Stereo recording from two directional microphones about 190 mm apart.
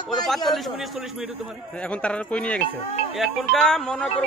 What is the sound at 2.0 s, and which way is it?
Speech, 5° left (ahead or behind).